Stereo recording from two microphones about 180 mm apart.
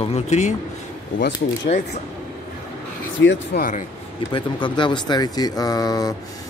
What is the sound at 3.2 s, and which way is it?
Speech, 80° left.